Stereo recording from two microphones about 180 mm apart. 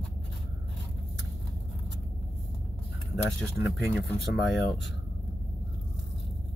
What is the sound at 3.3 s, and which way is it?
Speech, centre (ahead or behind).